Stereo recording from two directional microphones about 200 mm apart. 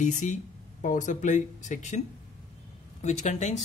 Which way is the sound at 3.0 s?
35° left (ahead or behind).